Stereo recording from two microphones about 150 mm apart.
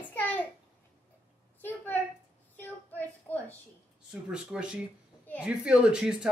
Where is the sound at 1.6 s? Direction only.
10° left (ahead or behind).